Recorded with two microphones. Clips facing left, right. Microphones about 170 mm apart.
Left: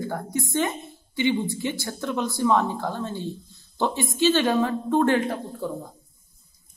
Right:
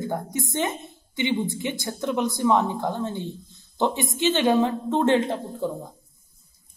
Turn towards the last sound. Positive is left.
turn(degrees=-25)  # may be behind; listen again after turning